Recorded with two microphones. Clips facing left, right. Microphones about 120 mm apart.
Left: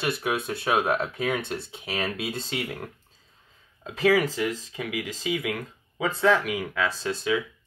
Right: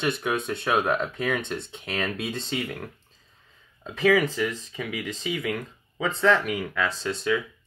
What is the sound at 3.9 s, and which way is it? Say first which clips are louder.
Speech: even; 40° left (ahead or behind).